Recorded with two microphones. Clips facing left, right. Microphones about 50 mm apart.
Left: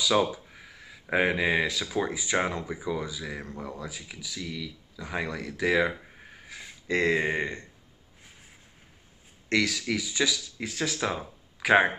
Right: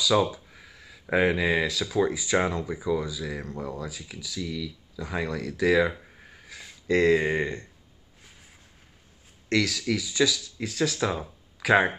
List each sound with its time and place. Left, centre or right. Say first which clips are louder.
0.0 s a sound: right 1 dB; centre
1.1 s speech: right 1 dB; centre
4.4 s speech: right 4 dB; left
4.9 s speech: right 2 dB; centre
9.5 s speech: right 1 dB; centre